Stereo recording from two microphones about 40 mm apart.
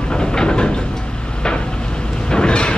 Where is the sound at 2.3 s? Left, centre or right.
Left.